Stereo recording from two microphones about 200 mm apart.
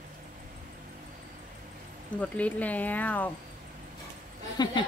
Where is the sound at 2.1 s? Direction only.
5° left (ahead or behind).